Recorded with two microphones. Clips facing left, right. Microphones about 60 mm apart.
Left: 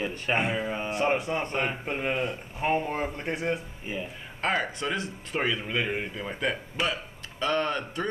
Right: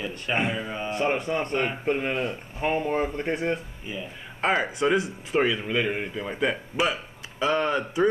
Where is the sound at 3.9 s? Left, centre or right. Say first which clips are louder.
Left 1 dB; left.